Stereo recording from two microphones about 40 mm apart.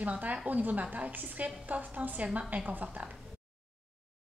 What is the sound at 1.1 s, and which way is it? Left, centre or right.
A woman's voice, right.